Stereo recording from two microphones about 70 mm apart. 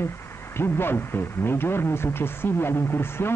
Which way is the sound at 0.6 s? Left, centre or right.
Left.